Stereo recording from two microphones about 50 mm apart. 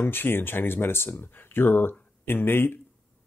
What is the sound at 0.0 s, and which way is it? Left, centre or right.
Speech, left.